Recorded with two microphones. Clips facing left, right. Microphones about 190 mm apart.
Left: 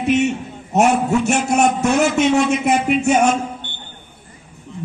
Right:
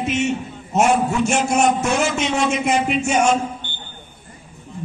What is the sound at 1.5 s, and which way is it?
A man's voice, 60° left (ahead or behind).